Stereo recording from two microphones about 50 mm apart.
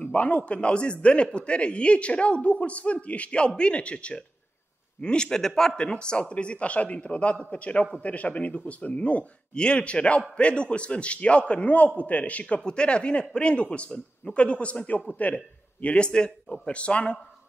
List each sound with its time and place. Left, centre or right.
0.0 s a man's voice: left